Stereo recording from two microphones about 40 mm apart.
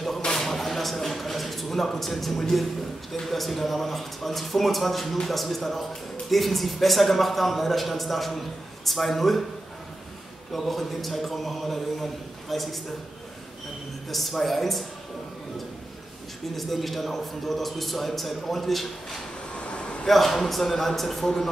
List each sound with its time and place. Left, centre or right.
0.4 s a sound: centre
3.3 s a man's voice: centre
10.5 s a man's voice: centre
14.0 s a man's voice: centre
16.5 s a man's voice: centre
19.5 s vehicle: left
20.1 s a man's voice: centre